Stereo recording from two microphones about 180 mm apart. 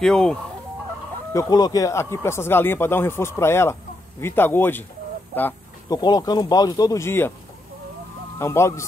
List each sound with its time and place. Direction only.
0.0 s chicken: 5° left (ahead or behind)
1.3 s speech: 20° left (ahead or behind)
5.9 s speech: 20° left (ahead or behind)
8.4 s speech: 15° left (ahead or behind)